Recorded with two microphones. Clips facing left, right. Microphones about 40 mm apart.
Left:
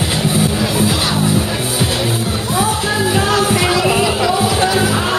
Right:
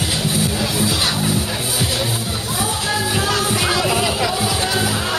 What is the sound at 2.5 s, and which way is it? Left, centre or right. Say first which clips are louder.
Music: left 6 dB; left.